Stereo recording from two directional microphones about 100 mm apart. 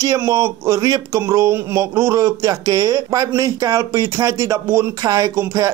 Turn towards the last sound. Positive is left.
turn(degrees=-30)  # may be behind; listen again after turning